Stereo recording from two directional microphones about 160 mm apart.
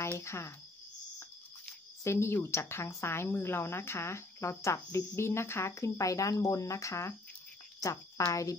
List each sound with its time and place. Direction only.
0.0 s speech: 15° left (ahead or behind)
2.0 s speech: 15° left (ahead or behind)